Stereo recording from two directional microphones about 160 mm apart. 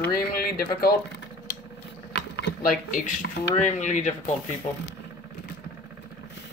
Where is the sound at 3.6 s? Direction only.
50° left (ahead or behind).